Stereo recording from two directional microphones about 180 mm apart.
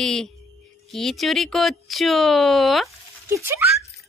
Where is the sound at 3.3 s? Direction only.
15° right (ahead or behind).